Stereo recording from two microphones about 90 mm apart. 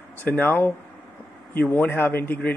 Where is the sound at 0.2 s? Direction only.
20° left (ahead or behind).